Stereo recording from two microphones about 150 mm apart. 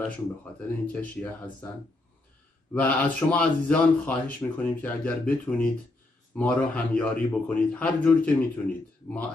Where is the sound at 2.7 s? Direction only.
10° left (ahead or behind).